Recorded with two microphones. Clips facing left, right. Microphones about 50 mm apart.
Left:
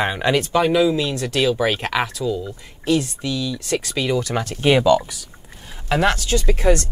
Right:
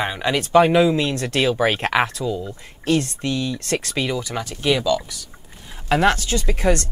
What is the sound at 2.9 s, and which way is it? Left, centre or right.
Speech, right.